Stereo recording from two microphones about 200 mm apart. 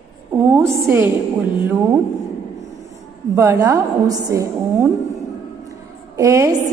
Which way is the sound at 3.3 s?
15° right (ahead or behind).